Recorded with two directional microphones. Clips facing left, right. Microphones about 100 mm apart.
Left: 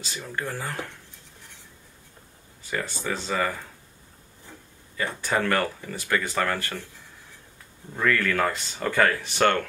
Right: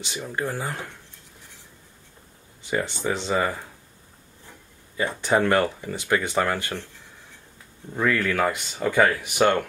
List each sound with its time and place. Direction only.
0.0 s speech: 20° right (ahead or behind)
2.7 s speech: 20° right (ahead or behind)
4.9 s speech: 20° right (ahead or behind)
7.9 s speech: 15° right (ahead or behind)